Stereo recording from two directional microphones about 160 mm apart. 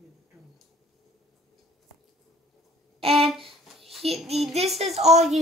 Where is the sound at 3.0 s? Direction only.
40° right (ahead or behind).